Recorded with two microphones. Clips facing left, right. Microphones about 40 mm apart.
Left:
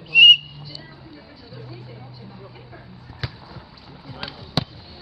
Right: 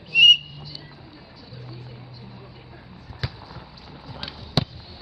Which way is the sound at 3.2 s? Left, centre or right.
Centre.